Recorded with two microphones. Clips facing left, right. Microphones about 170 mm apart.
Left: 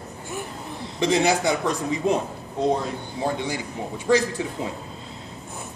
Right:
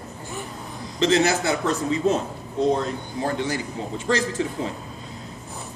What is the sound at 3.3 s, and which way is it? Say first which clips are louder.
Speech: right 2 dB; 15° left (ahead or behind).